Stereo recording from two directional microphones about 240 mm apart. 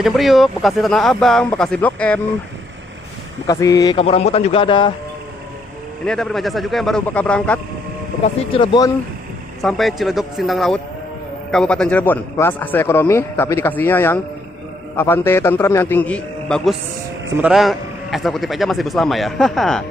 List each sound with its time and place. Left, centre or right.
0.0 s a man's voice: centre
3.4 s a man's voice: centre
6.0 s a man's voice: centre
8.5 s a man's voice: centre
9.6 s a man's voice: centre